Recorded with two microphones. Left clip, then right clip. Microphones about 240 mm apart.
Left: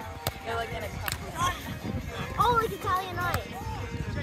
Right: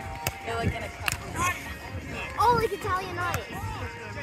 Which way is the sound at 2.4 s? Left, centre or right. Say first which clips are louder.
Right 2 dB; right.